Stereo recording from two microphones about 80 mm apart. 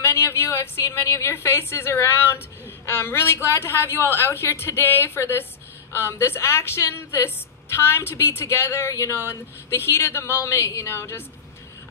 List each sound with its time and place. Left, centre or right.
0.0 s a woman's voice: left